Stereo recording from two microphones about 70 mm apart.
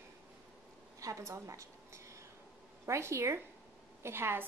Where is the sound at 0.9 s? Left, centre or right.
Right.